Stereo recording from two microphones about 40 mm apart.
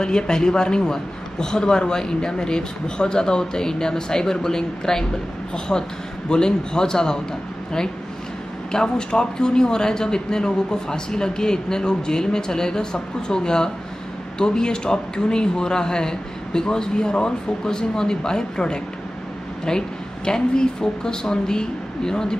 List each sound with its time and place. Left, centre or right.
0.0 s speech: centre
8.7 s speech: centre